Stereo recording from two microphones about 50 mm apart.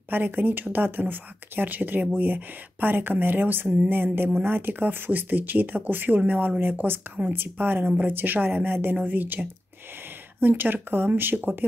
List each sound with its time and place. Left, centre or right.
0.1 s speech: right
10.4 s speech: right